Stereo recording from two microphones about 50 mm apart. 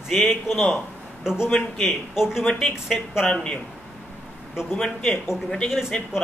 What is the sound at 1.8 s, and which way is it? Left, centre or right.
Speech, centre.